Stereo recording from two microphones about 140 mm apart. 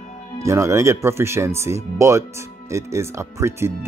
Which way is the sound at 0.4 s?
20° right (ahead or behind).